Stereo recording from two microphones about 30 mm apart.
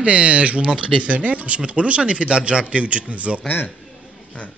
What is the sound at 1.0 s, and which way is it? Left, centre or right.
A man's voice, right.